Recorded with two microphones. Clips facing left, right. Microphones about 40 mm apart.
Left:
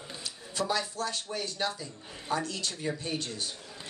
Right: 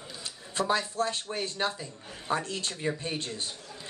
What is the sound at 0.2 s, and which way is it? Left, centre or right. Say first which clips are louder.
Speech: right 2 dB; right.